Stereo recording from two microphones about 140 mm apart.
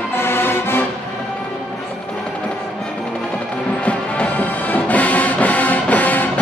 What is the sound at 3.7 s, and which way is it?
Music, 10° left (ahead or behind).